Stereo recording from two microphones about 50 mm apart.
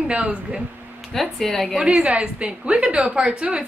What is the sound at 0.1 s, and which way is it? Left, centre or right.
Speech, right.